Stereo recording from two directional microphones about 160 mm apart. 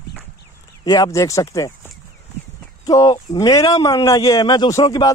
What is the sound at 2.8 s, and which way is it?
Speech, 25° left (ahead or behind).